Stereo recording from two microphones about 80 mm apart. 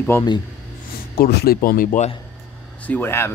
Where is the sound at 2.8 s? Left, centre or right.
Centre.